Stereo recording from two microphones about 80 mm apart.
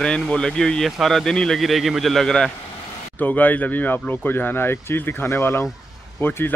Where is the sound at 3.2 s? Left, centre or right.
Left.